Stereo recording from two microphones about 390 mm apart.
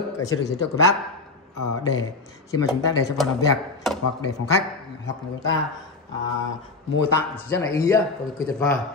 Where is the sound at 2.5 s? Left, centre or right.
Centre.